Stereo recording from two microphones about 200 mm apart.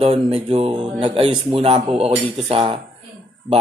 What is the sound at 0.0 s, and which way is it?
Speech, 30° right (ahead or behind).